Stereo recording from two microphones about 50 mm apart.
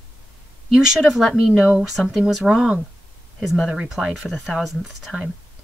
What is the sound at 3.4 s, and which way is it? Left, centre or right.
Speech, centre.